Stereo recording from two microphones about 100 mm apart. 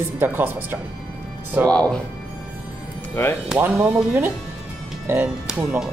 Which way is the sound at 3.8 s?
20° right (ahead or behind).